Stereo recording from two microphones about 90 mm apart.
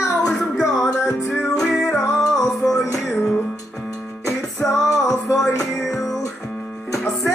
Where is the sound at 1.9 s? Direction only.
35° left (ahead or behind).